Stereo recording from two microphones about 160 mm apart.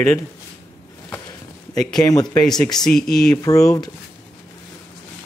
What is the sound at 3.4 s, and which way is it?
Speech, 20° left (ahead or behind).